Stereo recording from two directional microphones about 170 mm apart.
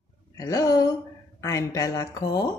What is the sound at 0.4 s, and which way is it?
A woman's voice, 20° left (ahead or behind).